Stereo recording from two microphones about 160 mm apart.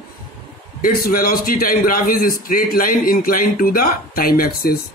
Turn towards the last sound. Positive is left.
turn(degrees=65)  # may be behind; listen again after turning